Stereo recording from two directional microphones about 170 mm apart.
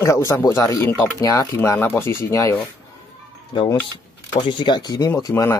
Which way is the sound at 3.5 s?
30° left (ahead or behind).